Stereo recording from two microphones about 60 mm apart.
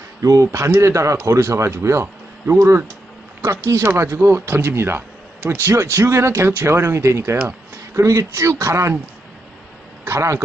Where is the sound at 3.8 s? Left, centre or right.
Right.